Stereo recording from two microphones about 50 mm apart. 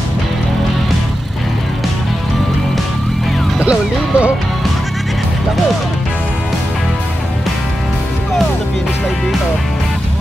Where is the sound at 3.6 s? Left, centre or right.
Right.